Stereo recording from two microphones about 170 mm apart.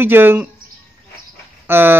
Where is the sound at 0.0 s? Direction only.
10° right (ahead or behind).